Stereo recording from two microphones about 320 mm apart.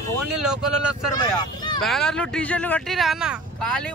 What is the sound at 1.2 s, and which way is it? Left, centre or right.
Speech, centre.